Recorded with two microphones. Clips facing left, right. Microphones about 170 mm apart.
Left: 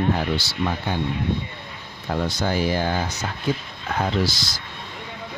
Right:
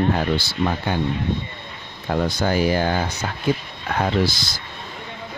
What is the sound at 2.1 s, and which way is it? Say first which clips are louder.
Speech: right 3 dB; 55° right (ahead or behind).